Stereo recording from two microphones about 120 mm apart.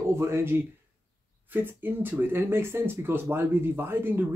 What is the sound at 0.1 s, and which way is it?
Speech, 20° right (ahead or behind).